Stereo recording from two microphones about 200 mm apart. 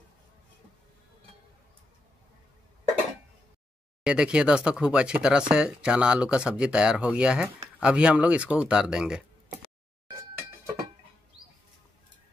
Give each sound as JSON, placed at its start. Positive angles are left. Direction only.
{"t": 4.0, "sound": "speech", "side_deg": -5}